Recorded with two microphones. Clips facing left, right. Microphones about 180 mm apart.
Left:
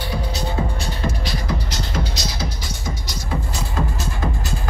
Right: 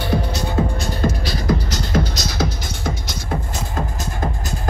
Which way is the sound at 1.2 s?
45° right (ahead or behind).